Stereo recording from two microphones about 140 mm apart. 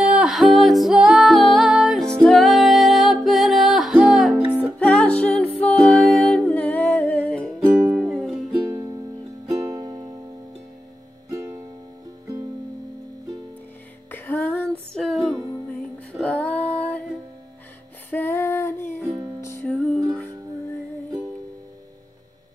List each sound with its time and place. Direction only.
0.0 s music: 5° right (ahead or behind)
4.7 s music: 10° left (ahead or behind)
7.8 s music: 15° right (ahead or behind)
8.1 s music: centre (ahead or behind)
9.6 s music: 25° right (ahead or behind)
11.2 s music: 20° right (ahead or behind)
14.1 s female singing: 15° left (ahead or behind)
15.0 s music: centre (ahead or behind)
15.7 s female singing: 10° left (ahead or behind)
18.1 s music: 15° left (ahead or behind)
19.6 s music: 5° left (ahead or behind)